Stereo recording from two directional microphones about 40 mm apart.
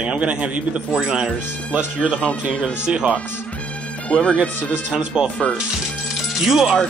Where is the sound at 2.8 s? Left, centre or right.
Right.